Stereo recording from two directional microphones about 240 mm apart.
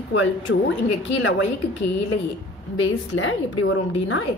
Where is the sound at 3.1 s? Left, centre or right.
Left.